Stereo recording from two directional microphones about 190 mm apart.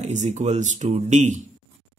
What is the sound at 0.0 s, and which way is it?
Speech, 35° right (ahead or behind).